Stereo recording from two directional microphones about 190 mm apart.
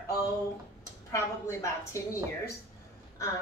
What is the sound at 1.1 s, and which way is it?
A woman's voice, 15° left (ahead or behind).